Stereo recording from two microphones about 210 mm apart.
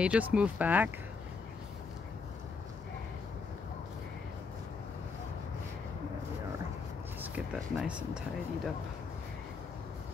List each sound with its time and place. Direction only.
0.0 s speech: 5° right (ahead or behind)
7.2 s a sound: 5° right (ahead or behind)
7.7 s speech: 5° right (ahead or behind)